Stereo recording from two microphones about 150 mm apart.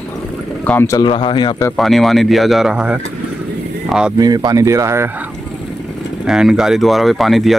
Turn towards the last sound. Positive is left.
turn(degrees=0)  # may be behind; listen again after turning